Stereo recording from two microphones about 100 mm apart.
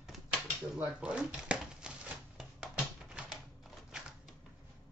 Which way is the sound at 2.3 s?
5° right (ahead or behind).